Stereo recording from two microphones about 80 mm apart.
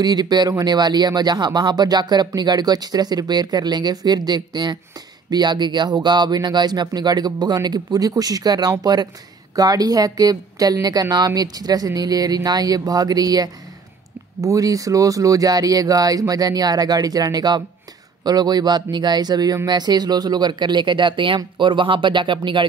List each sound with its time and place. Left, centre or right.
0.0 s speech: right